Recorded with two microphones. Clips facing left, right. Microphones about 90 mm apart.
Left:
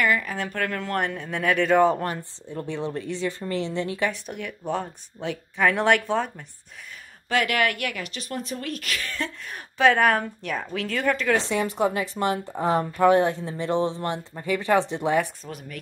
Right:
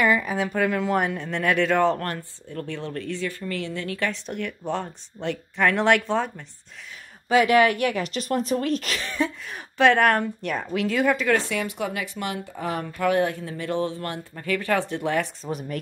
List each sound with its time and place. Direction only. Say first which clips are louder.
0.0 s speech: right 2 dB; 15° right (ahead or behind)
0.4 s speech: right 5 dB; 5° right (ahead or behind); by 4.1 s 20° left (ahead or behind)
4.1 s speech: right 3 dB; 5° left (ahead or behind)
7.2 s speech: right 6 dB; 15° right (ahead or behind)
8.0 s a woman's voice: right 7 dB; 40° right (ahead or behind)
9.5 s speech: even; centre (ahead or behind)
11.3 s speech: left 2 dB; 25° left (ahead or behind)